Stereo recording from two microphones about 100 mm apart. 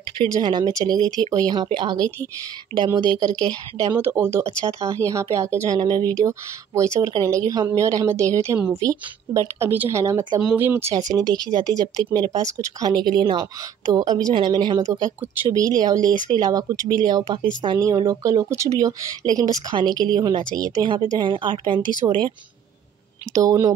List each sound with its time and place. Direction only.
0.3 s speech: 50° right (ahead or behind)
3.9 s speech: 25° right (ahead or behind)
5.8 s speech: 45° right (ahead or behind)
6.1 s speech: 30° right (ahead or behind)
9.6 s speech: 25° right (ahead or behind)
11.0 s speech: 40° right (ahead or behind)
14.8 s speech: 35° right (ahead or behind)
21.2 s speech: 50° right (ahead or behind)
23.3 s speech: 30° right (ahead or behind)